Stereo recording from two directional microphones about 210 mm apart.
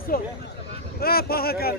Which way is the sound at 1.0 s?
45° left (ahead or behind).